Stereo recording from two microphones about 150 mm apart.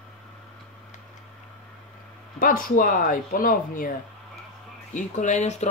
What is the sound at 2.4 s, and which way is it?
Speech, 70° left (ahead or behind).